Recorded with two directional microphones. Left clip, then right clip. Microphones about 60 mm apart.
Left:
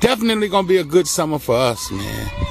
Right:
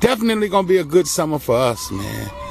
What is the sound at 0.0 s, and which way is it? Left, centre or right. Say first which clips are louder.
A man's voice: even; centre.